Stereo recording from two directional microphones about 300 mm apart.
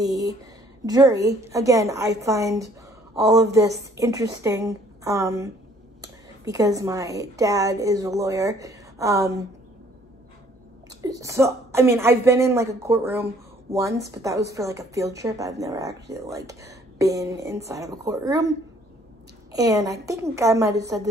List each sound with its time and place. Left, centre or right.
0.0 s a sound: centre
0.8 s speech: centre
11.0 s speech: centre
19.5 s speech: centre